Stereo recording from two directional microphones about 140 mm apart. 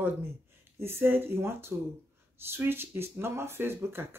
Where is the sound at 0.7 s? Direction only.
15° right (ahead or behind).